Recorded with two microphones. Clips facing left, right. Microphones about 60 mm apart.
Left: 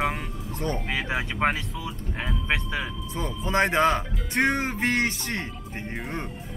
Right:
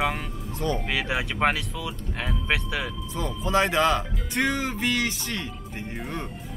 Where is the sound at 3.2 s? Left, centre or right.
Left.